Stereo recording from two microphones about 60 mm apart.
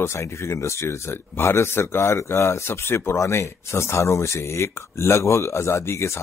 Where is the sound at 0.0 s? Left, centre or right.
Left.